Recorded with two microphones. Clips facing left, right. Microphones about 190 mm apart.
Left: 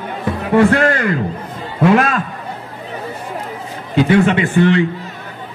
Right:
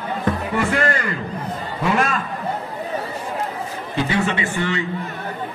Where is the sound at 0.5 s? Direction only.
65° left (ahead or behind).